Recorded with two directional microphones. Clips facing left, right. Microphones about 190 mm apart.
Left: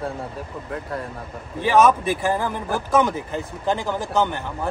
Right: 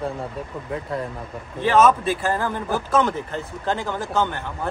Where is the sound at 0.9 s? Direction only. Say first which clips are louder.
Right 3 dB; centre (ahead or behind).